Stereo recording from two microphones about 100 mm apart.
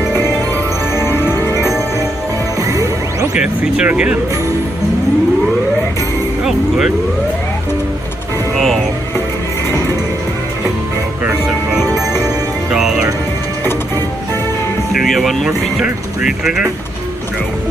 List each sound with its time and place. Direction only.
0.9 s music: 25° left (ahead or behind)
2.7 s music: 35° right (ahead or behind)
3.3 s speech: 10° right (ahead or behind)
12.7 s music: 5° right (ahead or behind)
14.9 s music: centre (ahead or behind)
15.8 s speech: 10° right (ahead or behind)